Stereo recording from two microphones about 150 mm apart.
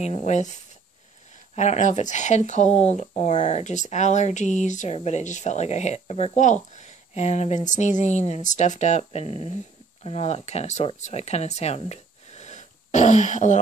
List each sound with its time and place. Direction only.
0.0 s speech: 45° left (ahead or behind)